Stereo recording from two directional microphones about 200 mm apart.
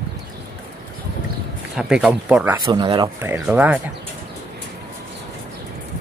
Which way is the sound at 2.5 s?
25° right (ahead or behind).